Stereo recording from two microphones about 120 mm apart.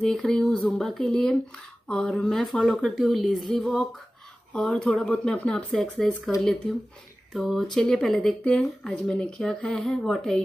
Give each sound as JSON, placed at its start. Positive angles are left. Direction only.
{"t": 0.0, "sound": "speech", "side_deg": 5}
{"t": 7.3, "sound": "speech", "side_deg": 0}